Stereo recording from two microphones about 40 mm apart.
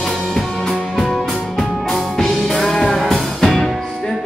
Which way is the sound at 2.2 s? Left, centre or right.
Centre.